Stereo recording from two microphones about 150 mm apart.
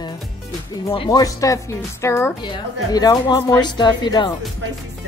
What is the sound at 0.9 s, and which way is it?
Speech, 30° left (ahead or behind).